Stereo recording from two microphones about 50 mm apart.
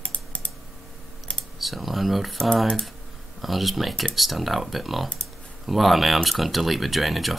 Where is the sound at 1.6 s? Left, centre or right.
Centre.